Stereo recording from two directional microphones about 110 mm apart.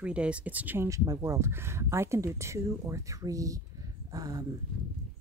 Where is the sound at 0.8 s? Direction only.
30° right (ahead or behind).